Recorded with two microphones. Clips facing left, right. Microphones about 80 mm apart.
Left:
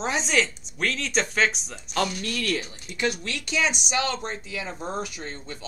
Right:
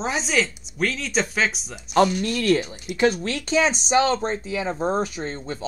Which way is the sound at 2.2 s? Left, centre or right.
Right.